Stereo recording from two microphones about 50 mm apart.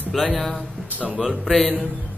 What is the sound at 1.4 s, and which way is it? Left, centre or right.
Speech, centre.